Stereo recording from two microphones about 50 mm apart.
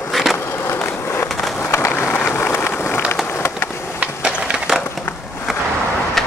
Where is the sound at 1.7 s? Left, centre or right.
Left.